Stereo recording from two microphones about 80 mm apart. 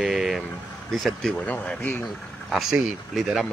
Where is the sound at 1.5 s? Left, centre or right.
Centre.